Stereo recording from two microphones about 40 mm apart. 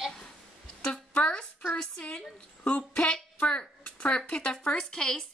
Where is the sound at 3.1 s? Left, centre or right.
Centre.